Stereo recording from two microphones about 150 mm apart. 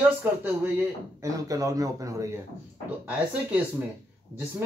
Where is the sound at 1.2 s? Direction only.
20° right (ahead or behind).